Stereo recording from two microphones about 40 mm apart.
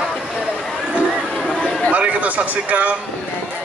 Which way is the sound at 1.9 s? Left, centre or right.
Right.